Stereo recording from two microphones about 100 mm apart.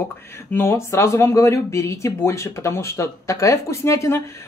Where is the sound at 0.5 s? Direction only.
25° left (ahead or behind).